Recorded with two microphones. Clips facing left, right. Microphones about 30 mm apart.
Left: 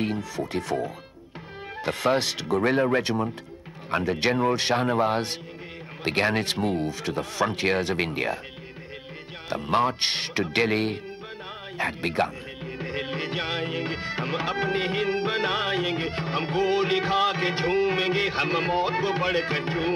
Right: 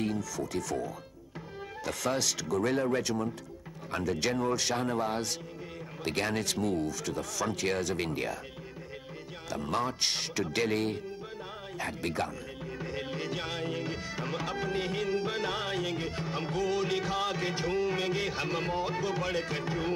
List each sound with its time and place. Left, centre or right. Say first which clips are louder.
0.0 s speech: left 4 dB; left
9.5 s speech: left 8 dB; left